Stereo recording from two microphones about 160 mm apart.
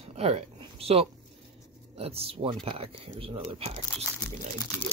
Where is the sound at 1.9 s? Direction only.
40° right (ahead or behind).